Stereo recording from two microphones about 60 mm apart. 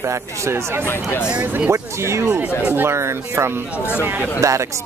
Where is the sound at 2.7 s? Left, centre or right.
Right.